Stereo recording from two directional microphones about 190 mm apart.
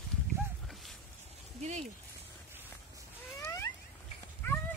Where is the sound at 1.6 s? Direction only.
35° right (ahead or behind).